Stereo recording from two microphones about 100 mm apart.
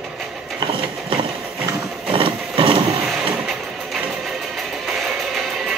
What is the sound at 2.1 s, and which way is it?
Vehicle, 60° right (ahead or behind).